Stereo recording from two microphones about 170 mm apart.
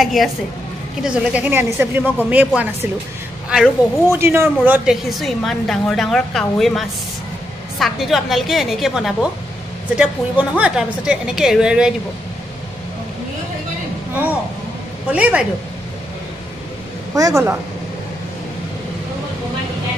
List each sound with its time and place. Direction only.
0.0 s a woman's voice: centre (ahead or behind)
4.1 s a woman's voice: 15° right (ahead or behind)
15.0 s speech: 10° right (ahead or behind)
17.1 s a woman's voice: 20° right (ahead or behind)